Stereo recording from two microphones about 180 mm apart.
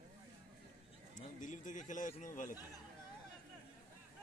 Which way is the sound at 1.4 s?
45° left (ahead or behind).